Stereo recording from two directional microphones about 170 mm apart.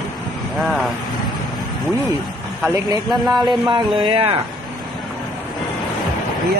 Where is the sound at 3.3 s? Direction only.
25° right (ahead or behind).